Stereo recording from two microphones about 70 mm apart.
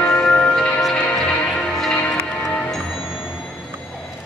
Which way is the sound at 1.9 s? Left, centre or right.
Left.